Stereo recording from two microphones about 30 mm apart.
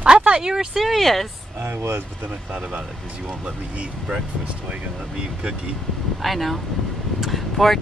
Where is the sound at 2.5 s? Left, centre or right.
Right.